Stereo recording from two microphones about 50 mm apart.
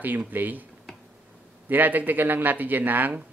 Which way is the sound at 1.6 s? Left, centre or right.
Right.